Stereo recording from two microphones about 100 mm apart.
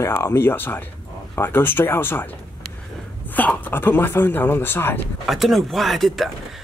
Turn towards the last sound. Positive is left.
turn(degrees=0)  # may be behind; listen again after turning